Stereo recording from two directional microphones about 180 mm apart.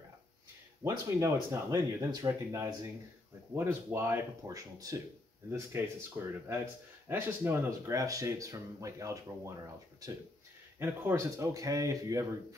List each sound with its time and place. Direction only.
0.8 s speech: 15° right (ahead or behind)
10.8 s speech: 15° right (ahead or behind)